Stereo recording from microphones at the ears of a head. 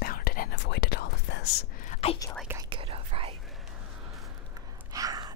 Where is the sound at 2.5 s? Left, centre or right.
Right.